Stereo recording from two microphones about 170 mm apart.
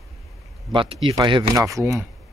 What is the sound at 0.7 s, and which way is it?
Speech, 30° right (ahead or behind).